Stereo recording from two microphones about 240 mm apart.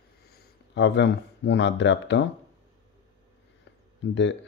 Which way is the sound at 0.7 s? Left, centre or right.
Left.